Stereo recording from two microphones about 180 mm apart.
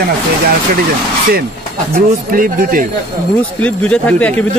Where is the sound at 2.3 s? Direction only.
50° right (ahead or behind).